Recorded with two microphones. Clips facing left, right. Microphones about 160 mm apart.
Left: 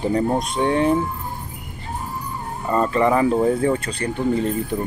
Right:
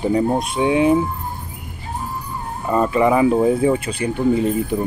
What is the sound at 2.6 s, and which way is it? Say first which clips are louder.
Speech: right 2 dB; 10° right (ahead or behind).